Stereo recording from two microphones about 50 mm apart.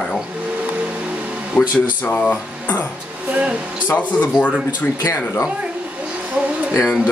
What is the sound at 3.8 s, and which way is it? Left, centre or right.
Speech, left.